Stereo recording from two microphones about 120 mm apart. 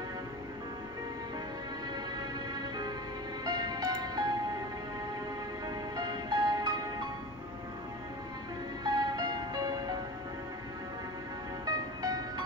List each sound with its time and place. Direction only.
3.4 s music: 35° right (ahead or behind)
5.9 s music: 35° right (ahead or behind)
8.8 s music: 35° right (ahead or behind)
11.6 s music: 35° right (ahead or behind)